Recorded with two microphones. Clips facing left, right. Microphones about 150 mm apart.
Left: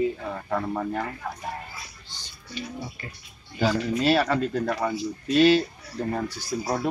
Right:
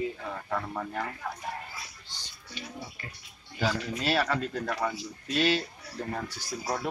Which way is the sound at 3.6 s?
20° left (ahead or behind).